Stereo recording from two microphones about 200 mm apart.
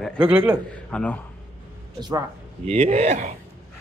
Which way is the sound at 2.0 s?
20° right (ahead or behind).